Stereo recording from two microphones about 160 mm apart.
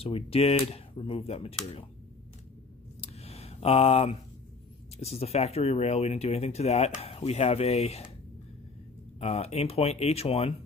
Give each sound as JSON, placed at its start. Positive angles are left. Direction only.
{"t": 0.0, "sound": "speech", "side_deg": 40}
{"t": 3.0, "sound": "a sound", "side_deg": 40}
{"t": 4.9, "sound": "speech", "side_deg": 40}
{"t": 9.2, "sound": "speech", "side_deg": 40}